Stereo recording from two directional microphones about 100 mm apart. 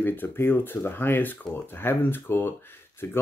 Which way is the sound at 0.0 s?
20° left (ahead or behind).